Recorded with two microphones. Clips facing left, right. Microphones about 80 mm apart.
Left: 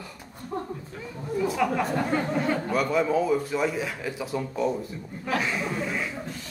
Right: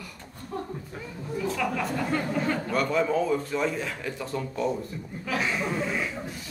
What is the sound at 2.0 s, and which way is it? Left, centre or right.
Speech, centre.